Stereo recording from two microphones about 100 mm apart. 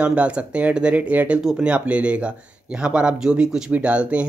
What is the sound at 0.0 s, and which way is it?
Speech, 10° right (ahead or behind).